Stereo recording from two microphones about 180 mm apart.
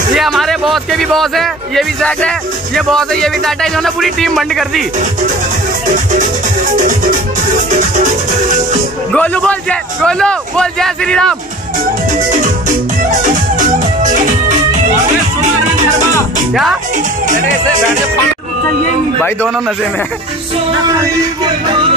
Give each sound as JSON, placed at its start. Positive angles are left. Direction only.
{"t": 0.1, "sound": "speech", "side_deg": 0}
{"t": 5.9, "sound": "music", "side_deg": -45}
{"t": 9.1, "sound": "speech", "side_deg": 10}
{"t": 12.3, "sound": "music", "side_deg": -45}